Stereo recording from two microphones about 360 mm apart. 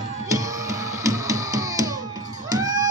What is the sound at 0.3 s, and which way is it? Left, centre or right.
Music, centre.